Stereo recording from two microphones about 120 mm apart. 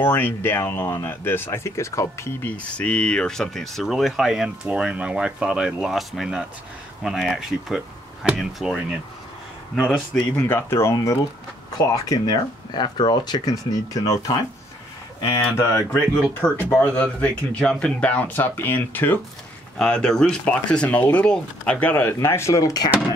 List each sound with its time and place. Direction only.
0.0 s speech: 20° left (ahead or behind)
2.5 s speech: 10° left (ahead or behind)
10.1 s speech: 15° left (ahead or behind)
15.9 s speech: 15° left (ahead or behind); by 22.8 s 30° left (ahead or behind)